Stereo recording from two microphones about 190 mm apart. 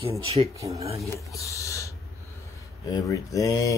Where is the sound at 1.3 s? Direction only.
15° left (ahead or behind).